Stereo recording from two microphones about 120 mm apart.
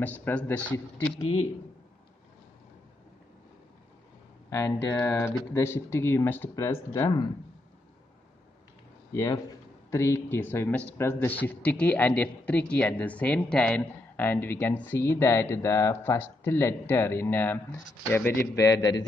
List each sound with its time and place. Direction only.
0.0 s speech: 15° left (ahead or behind)
4.5 s speech: 25° left (ahead or behind)
9.1 s speech: 25° left (ahead or behind)